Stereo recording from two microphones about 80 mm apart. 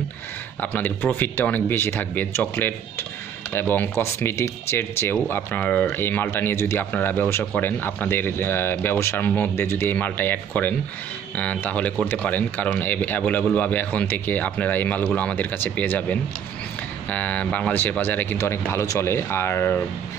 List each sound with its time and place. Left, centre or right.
0.6 s speech: left